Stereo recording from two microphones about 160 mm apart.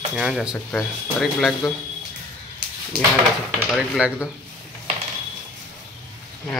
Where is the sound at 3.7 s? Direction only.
Centre (ahead or behind).